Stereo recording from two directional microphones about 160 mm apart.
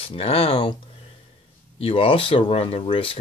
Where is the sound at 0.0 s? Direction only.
40° left (ahead or behind).